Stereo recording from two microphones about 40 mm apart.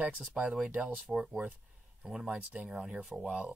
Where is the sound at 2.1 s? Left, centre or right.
Right.